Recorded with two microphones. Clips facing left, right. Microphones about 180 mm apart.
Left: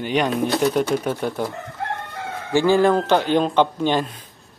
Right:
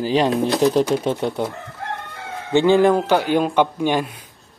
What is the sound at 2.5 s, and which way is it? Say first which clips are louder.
Speech: right 2 dB; 20° right (ahead or behind).